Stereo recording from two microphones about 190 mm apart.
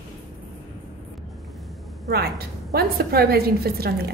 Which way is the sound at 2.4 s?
55° right (ahead or behind).